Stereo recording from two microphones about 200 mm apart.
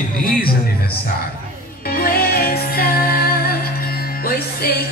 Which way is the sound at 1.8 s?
50° left (ahead or behind).